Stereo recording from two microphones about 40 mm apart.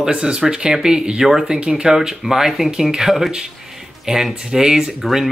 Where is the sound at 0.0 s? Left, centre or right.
Right.